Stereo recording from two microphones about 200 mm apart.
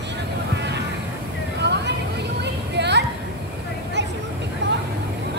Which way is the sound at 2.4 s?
60° right (ahead or behind).